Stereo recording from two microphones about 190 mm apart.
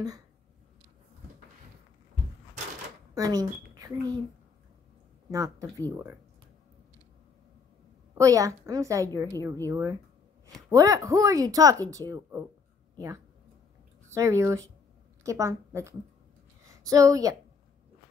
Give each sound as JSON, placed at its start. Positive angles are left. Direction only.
{"t": 3.2, "sound": "speech", "side_deg": -20}
{"t": 3.7, "sound": "a sound", "side_deg": -20}
{"t": 5.3, "sound": "speech", "side_deg": -15}
{"t": 8.1, "sound": "speech", "side_deg": -15}
{"t": 14.1, "sound": "speech", "side_deg": -15}
{"t": 16.9, "sound": "speech", "side_deg": -15}